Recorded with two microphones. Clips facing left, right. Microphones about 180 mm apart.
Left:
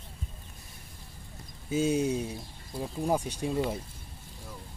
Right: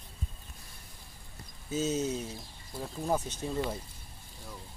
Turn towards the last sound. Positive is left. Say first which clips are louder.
# left 4 dB
turn(degrees=10)  # may be behind; listen again after turning